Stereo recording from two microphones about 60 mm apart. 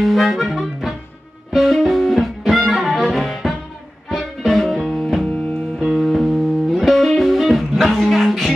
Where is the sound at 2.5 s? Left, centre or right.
Centre.